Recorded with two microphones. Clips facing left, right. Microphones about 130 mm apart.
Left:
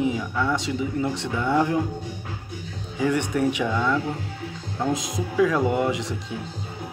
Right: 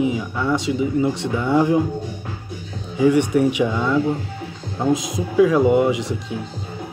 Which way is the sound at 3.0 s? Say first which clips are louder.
Right 7 dB; 10° right (ahead or behind).